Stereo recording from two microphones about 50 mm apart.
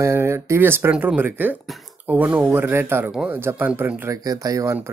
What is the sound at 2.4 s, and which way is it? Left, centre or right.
Speech, right.